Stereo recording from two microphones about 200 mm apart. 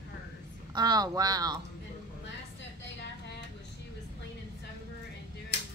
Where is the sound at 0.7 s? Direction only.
20° right (ahead or behind).